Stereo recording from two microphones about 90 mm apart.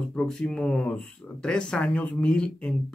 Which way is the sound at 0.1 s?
10° left (ahead or behind).